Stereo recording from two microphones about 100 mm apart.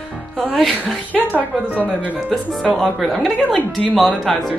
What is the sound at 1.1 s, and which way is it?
Speech, centre (ahead or behind).